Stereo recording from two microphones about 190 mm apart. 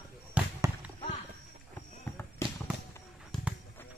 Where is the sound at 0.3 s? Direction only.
10° right (ahead or behind).